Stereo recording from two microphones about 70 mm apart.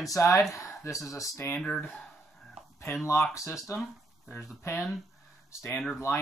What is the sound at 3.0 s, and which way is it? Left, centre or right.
Speech, left.